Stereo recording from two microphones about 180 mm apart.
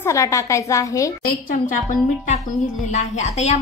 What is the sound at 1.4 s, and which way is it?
A woman's voice, 50° left (ahead or behind).